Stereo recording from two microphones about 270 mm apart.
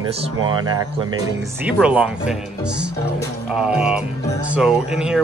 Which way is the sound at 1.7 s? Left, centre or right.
Centre.